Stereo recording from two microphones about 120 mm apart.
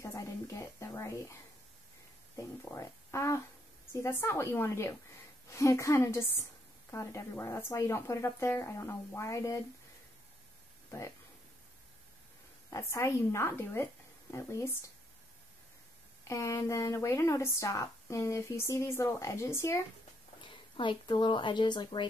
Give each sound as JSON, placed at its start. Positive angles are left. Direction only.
{"t": 0.0, "sound": "a sound", "side_deg": 25}
{"t": 2.3, "sound": "speech", "side_deg": 25}
{"t": 12.6, "sound": "speech", "side_deg": 25}
{"t": 16.3, "sound": "speech", "side_deg": 25}
{"t": 20.7, "sound": "speech", "side_deg": 45}